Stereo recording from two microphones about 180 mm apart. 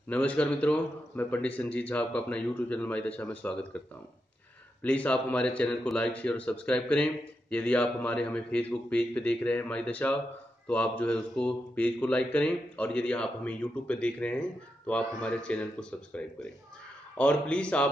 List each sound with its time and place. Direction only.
0.1 s speech: 5° left (ahead or behind)
4.8 s speech: 5° left (ahead or behind)